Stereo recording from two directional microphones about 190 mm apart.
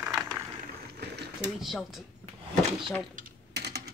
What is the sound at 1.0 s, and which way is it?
Mechanisms, 60° right (ahead or behind).